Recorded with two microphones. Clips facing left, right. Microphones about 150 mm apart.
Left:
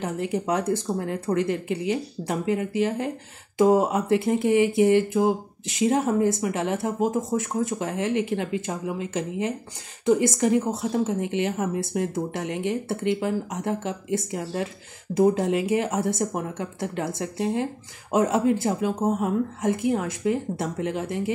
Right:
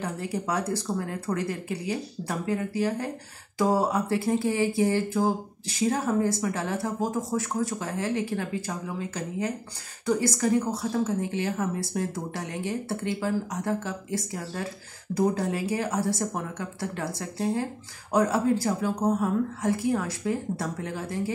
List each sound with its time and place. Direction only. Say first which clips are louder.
0.0 s speech: left 4 dB; 20° left (ahead or behind)